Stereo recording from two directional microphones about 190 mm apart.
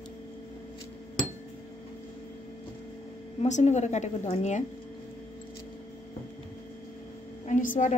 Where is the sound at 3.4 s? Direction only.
35° left (ahead or behind).